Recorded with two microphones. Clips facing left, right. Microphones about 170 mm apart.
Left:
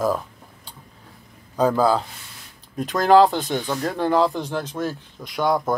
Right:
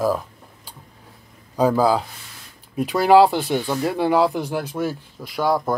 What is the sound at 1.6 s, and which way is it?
Speech, 10° right (ahead or behind).